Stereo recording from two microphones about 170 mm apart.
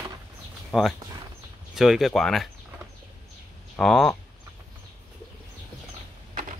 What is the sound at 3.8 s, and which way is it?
Speech, centre (ahead or behind).